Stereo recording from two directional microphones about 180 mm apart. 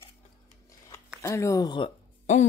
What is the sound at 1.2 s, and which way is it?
Speech, 15° left (ahead or behind).